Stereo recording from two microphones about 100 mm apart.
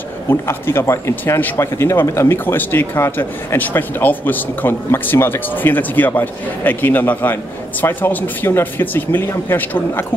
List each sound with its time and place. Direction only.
0.3 s speech: 25° left (ahead or behind)